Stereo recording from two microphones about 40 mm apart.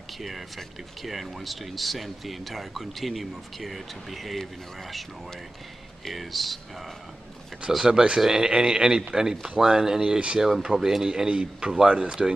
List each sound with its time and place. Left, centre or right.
1.0 s speech: centre
6.0 s speech: centre
7.8 s speech: centre
11.2 s speech: right